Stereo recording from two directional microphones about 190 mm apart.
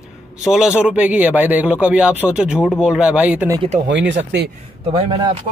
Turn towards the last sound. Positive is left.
turn(degrees=-30)  # may be behind; listen again after turning